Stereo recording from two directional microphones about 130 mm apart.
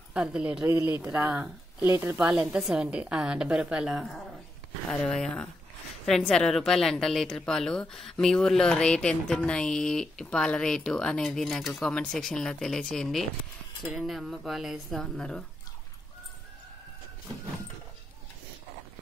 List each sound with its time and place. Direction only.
0.1 s a woman's voice: 10° right (ahead or behind)